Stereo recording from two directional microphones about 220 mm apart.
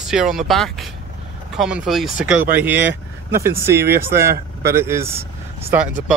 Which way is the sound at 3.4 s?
10° right (ahead or behind).